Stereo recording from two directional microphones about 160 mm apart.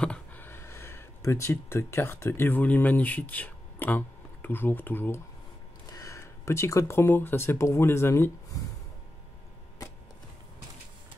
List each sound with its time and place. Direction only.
0.0 s speech: 10° left (ahead or behind)